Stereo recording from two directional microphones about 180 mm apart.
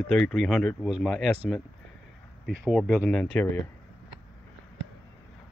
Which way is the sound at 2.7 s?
5° right (ahead or behind).